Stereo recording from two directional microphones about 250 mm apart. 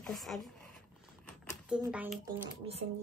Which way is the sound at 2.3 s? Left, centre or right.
Right.